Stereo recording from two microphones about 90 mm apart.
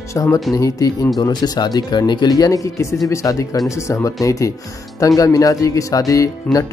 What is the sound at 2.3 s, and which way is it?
Speech, 40° left (ahead or behind).